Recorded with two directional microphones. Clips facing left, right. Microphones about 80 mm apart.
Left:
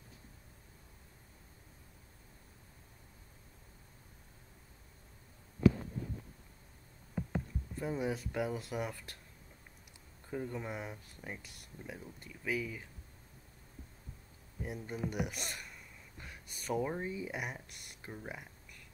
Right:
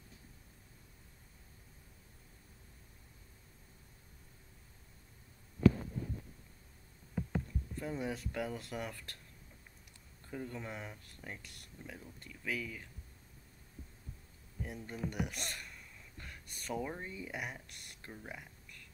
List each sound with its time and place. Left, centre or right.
5.6 s heart sounds: centre
7.2 s speech: centre
10.2 s speech: centre
14.6 s speech: centre